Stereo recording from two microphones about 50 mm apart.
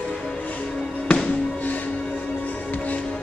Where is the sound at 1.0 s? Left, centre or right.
Centre.